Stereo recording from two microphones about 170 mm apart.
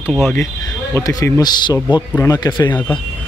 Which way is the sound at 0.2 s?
10° left (ahead or behind).